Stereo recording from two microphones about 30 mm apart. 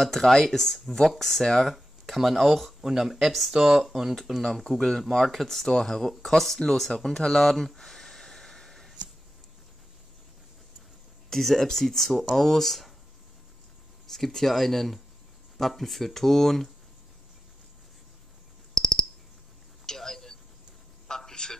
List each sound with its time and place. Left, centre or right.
0.0 s speech: centre
0.5 s speech: centre
1.7 s speech: centre
2.8 s speech: centre
3.1 s speech: centre
3.5 s speech: right
4.5 s speech: centre
4.7 s speech: centre
7.5 s a sound: centre
11.2 s speech: centre
14.0 s speech: centre
18.8 s cricket: centre
19.9 s a sound: centre